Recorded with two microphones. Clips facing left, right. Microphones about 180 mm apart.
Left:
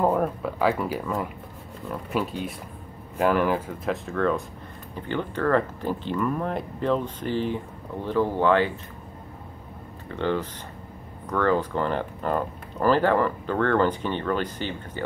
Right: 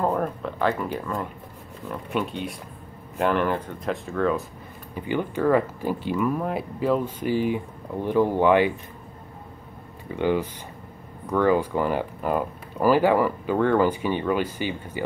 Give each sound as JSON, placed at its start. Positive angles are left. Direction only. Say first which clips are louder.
{"t": 0.0, "sound": "speech", "louder": "left 2 dB", "side_deg": 5}
{"t": 10.0, "sound": "speech", "louder": "right 3 dB", "side_deg": -10}